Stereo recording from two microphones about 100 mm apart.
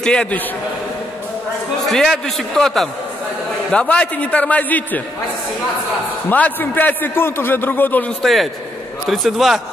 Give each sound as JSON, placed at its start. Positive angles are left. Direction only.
{"t": 0.0, "sound": "a man's voice", "side_deg": 10}
{"t": 1.9, "sound": "a man's voice", "side_deg": 5}
{"t": 6.2, "sound": "a man's voice", "side_deg": 15}
{"t": 8.2, "sound": "a man's voice", "side_deg": 0}